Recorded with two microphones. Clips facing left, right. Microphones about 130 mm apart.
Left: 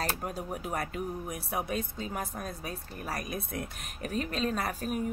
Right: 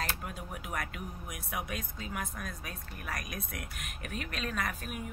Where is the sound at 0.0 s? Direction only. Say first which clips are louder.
Left 5 dB; 40° left (ahead or behind).